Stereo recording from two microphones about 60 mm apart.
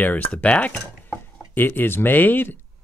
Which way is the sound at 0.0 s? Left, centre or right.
Left.